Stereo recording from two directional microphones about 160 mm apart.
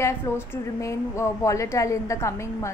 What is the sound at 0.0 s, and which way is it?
A woman's voice, 15° left (ahead or behind).